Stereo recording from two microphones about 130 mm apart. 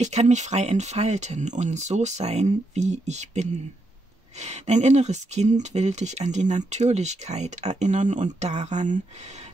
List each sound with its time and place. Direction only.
0.0 s speech: 60° right (ahead or behind)